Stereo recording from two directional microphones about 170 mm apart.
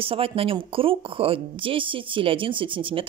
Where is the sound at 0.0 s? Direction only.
35° right (ahead or behind).